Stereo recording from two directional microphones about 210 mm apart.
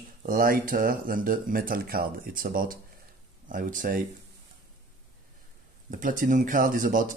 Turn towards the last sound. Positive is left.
turn(degrees=-40)  # may be behind; listen again after turning